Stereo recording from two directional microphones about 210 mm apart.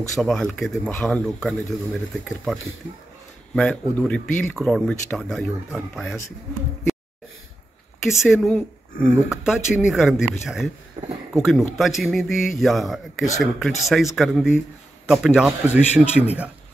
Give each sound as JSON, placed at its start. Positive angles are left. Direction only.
{"t": 0.1, "sound": "speech", "side_deg": 0}
{"t": 8.1, "sound": "speech", "side_deg": 0}
{"t": 11.0, "sound": "speech", "side_deg": -30}
{"t": 11.3, "sound": "speech", "side_deg": 0}